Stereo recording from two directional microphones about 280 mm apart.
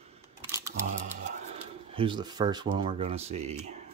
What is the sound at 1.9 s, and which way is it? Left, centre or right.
Speech, centre.